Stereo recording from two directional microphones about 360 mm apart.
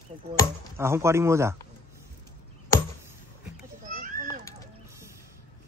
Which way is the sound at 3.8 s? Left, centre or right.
Right.